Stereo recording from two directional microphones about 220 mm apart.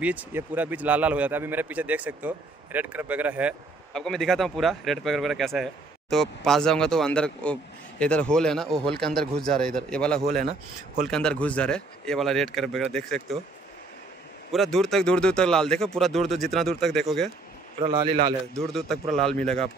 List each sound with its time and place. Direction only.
0.0 s a man's voice: 5° right (ahead or behind)
14.5 s a man's voice: centre (ahead or behind)
17.9 s a man's voice: 20° right (ahead or behind)
18.5 s a man's voice: centre (ahead or behind)